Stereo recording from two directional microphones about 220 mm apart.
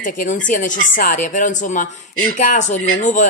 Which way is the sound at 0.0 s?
35° left (ahead or behind).